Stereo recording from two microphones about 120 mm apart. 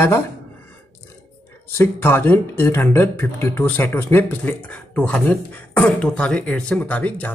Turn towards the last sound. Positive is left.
turn(degrees=15)  # may be behind; listen again after turning